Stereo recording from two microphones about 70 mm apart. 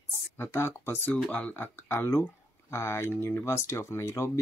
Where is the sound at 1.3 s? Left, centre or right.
Left.